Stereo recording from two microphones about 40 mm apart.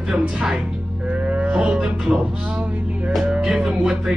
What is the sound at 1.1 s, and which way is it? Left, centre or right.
Livestock, right.